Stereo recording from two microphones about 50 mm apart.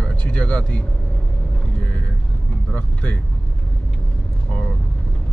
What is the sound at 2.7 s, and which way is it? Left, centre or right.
Speech, left.